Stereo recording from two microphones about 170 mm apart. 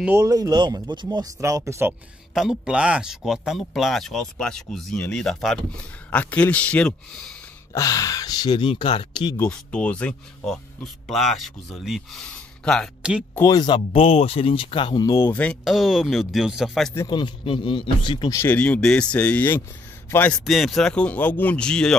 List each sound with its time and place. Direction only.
0.0 s speech: 15° right (ahead or behind); by 7.3 s 5° left (ahead or behind)
7.7 s speech: 20° left (ahead or behind)
9.4 s speech: 5° left (ahead or behind)
13.4 s speech: 25° left (ahead or behind)
15.2 s speech: 10° left (ahead or behind)
15.6 s speech: centre (ahead or behind)
17.1 s speech: 25° left (ahead or behind)
18.4 s a man's voice: 10° left (ahead or behind)
20.4 s speech: centre (ahead or behind)